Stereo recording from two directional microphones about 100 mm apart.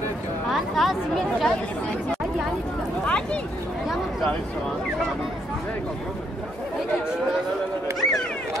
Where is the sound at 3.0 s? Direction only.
10° left (ahead or behind).